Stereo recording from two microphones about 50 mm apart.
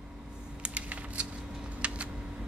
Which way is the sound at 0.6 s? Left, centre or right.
Right.